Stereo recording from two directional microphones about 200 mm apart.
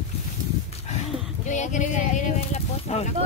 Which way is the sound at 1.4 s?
35° left (ahead or behind).